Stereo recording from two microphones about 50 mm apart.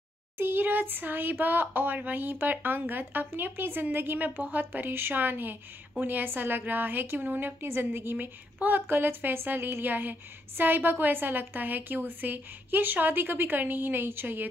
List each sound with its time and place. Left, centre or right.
0.4 s speech: right
8.5 s speech: right